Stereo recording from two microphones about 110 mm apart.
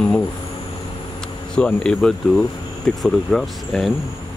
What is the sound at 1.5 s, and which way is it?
Speech, 10° left (ahead or behind).